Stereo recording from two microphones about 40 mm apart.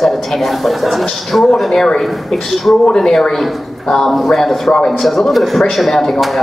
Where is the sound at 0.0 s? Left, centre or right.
Centre.